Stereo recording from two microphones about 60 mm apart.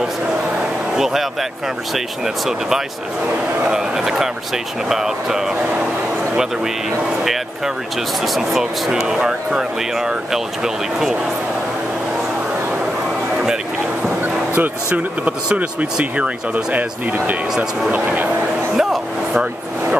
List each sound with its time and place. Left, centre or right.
0.9 s speech: centre
2.2 s speech: centre
8.4 s speech: centre
14.2 s speech: right
17.9 s speech: right
18.8 s a sound: centre